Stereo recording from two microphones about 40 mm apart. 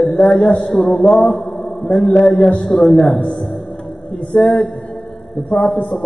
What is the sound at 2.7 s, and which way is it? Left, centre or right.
Speech, left.